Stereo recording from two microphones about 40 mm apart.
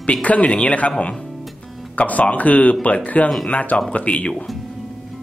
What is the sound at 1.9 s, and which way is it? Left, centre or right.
Speech, left.